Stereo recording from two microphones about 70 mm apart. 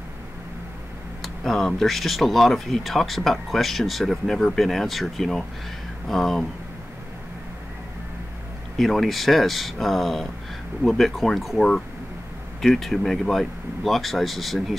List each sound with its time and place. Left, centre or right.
1.2 s speech: centre
8.7 s speech: centre
12.6 s speech: centre